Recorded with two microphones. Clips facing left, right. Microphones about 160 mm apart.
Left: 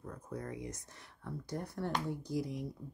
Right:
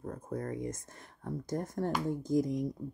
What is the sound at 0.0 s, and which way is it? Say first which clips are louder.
Speech: right 6 dB; 50° right (ahead or behind).